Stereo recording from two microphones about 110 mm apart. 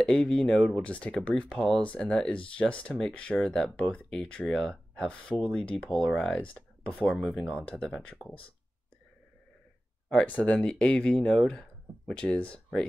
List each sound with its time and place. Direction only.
0.0 s speech: 5° left (ahead or behind)
10.0 s speech: 10° left (ahead or behind)